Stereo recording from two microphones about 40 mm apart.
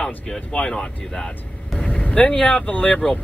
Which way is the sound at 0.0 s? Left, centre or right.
Left.